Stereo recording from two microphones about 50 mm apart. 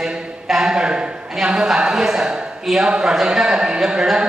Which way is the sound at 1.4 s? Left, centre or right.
Centre.